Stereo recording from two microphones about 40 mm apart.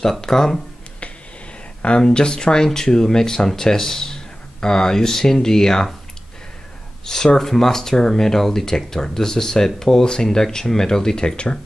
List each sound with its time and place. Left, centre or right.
0.2 s speech: centre
1.8 s speech: left
7.1 s speech: centre